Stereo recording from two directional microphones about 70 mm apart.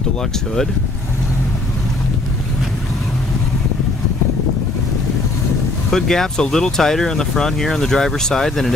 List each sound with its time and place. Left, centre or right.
5.9 s speech: centre